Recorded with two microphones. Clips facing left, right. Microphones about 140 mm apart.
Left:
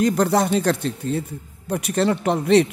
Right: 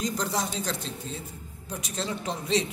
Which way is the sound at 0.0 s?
65° left (ahead or behind).